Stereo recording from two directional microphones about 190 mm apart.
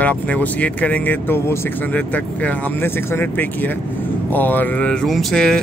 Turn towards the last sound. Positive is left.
turn(degrees=0)  # may be behind; listen again after turning